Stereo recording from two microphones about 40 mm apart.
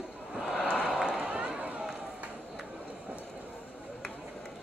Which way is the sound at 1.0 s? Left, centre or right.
Centre.